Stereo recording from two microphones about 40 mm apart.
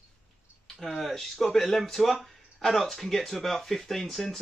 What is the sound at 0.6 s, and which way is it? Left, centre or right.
Speech, centre.